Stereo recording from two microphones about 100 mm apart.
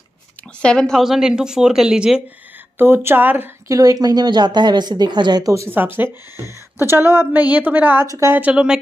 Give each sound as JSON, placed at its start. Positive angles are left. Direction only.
{"t": 0.6, "sound": "speech", "side_deg": 10}
{"t": 2.8, "sound": "speech", "side_deg": -25}
{"t": 3.6, "sound": "a woman's voice", "side_deg": -35}
{"t": 5.5, "sound": "a woman's voice", "side_deg": -30}
{"t": 8.1, "sound": "a woman's voice", "side_deg": -30}
{"t": 8.4, "sound": "a woman's voice", "side_deg": -10}